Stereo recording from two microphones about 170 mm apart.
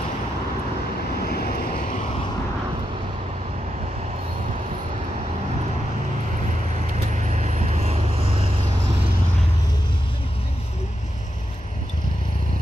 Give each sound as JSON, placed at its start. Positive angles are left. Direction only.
{"t": 1.2, "sound": "vehicle", "side_deg": 65}
{"t": 7.2, "sound": "vehicle", "side_deg": -45}